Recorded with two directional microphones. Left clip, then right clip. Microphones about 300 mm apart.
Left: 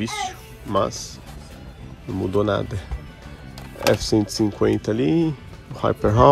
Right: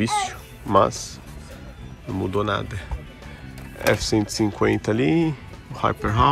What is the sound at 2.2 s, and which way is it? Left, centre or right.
Speech, centre.